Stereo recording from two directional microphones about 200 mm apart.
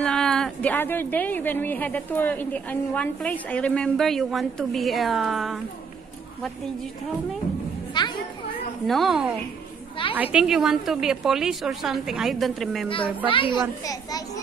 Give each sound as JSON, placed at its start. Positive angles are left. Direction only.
{"t": 0.0, "sound": "a woman's voice", "side_deg": 5}
{"t": 7.9, "sound": "a sound", "side_deg": 20}
{"t": 8.8, "sound": "a woman's voice", "side_deg": 0}
{"t": 13.3, "sound": "a child's voice", "side_deg": 25}